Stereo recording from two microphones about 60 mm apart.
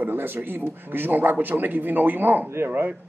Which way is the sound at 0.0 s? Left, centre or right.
Right.